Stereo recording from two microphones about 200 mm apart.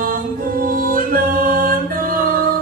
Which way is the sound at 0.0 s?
45° right (ahead or behind).